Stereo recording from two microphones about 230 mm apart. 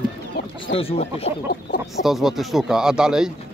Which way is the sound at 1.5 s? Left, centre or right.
Left.